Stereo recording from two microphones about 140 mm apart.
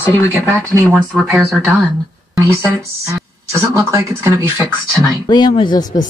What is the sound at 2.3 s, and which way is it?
A man's voice, 25° right (ahead or behind).